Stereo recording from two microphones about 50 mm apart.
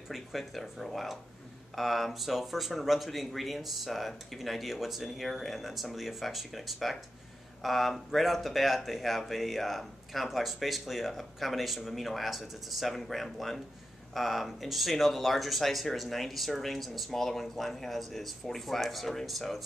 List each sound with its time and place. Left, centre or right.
0.1 s speech: centre